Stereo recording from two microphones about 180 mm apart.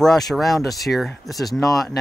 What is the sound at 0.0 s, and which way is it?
Speech, centre (ahead or behind).